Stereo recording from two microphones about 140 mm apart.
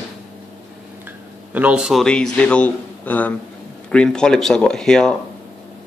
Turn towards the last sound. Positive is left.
turn(degrees=5)  # may be behind; listen again after turning